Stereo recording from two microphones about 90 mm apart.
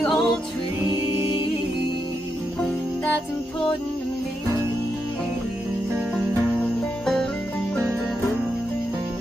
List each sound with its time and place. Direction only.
0.0 s music: 5° left (ahead or behind)